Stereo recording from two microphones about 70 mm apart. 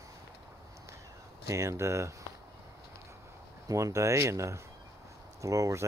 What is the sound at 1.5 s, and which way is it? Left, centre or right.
Speech, right.